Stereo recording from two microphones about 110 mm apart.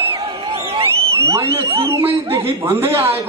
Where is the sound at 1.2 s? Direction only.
25° right (ahead or behind).